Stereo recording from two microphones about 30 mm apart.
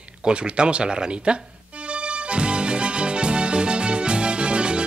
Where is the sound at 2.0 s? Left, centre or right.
Right.